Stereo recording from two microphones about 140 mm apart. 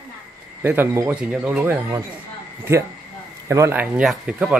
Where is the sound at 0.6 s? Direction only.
15° right (ahead or behind).